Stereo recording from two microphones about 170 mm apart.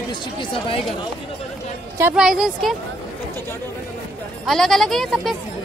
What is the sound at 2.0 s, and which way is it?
Speech, 10° right (ahead or behind).